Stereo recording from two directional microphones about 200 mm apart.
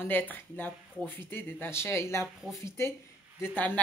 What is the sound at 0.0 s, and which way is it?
Speech, 10° left (ahead or behind).